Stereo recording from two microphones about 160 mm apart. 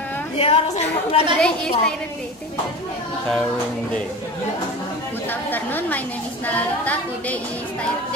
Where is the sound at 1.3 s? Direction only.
5° left (ahead or behind).